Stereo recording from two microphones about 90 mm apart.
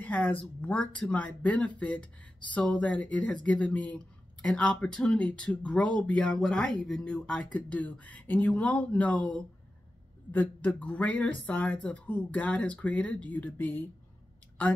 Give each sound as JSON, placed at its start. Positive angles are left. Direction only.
{"t": 0.0, "sound": "speech", "side_deg": 15}